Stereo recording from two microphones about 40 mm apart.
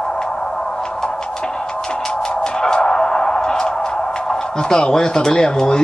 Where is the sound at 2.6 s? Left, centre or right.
Centre.